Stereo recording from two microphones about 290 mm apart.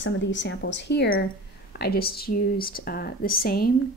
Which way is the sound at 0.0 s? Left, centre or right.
Left.